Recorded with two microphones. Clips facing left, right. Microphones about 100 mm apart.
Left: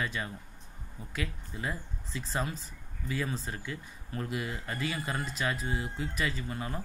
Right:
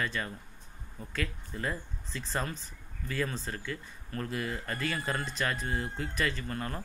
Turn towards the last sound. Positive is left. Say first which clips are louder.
# right 1 dB
turn(degrees=15)  # may be behind; listen again after turning